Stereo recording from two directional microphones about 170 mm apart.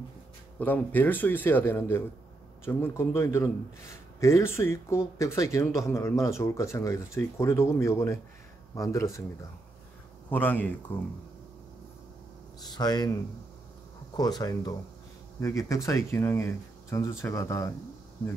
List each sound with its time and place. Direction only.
0.6 s speech: 10° left (ahead or behind)
10.3 s speech: 10° left (ahead or behind)
12.6 s speech: 25° left (ahead or behind)